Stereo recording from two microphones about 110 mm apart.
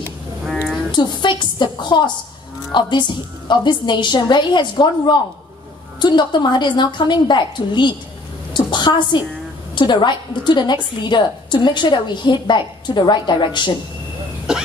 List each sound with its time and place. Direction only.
0.9 s a woman's voice: 45° left (ahead or behind)
8.5 s a sound: 45° left (ahead or behind)
9.8 s a woman's voice: 45° left (ahead or behind)